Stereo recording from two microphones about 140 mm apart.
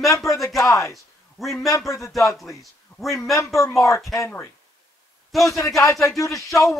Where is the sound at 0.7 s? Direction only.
20° left (ahead or behind).